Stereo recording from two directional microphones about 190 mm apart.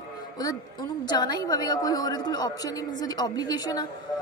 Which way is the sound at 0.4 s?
20° left (ahead or behind).